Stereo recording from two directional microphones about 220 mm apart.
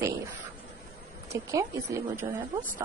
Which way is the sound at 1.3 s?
15° right (ahead or behind).